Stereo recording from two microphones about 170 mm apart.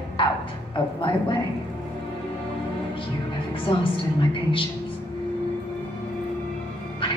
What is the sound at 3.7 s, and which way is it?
Speech, 30° left (ahead or behind).